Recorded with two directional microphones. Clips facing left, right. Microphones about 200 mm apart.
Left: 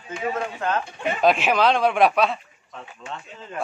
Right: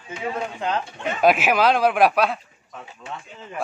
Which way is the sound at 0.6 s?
15° right (ahead or behind).